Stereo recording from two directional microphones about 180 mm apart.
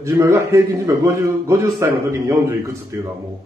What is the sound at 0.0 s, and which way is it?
A man's voice, 15° right (ahead or behind).